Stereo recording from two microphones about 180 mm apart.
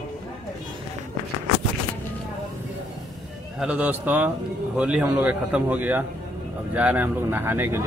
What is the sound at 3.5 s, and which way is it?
A man's voice, 5° right (ahead or behind).